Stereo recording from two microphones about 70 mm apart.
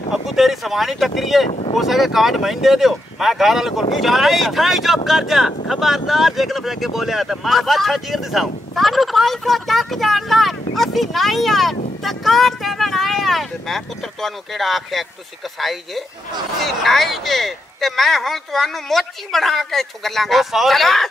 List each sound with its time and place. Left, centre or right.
0.1 s speech: centre